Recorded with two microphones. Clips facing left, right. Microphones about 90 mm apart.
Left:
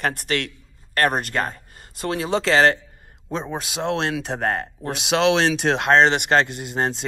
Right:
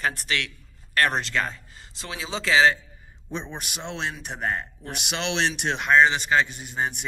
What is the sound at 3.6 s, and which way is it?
Speech, 90° left.